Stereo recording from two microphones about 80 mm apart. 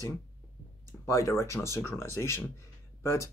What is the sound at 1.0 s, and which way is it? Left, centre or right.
Speech, left.